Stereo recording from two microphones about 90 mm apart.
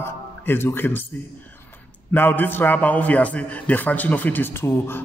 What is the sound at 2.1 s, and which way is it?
A man's voice, 20° left (ahead or behind).